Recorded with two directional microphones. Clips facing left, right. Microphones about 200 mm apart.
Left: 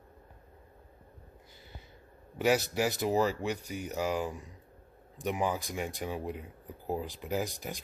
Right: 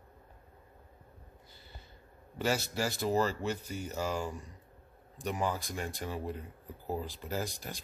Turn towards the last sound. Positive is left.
turn(degrees=15)  # may be behind; listen again after turning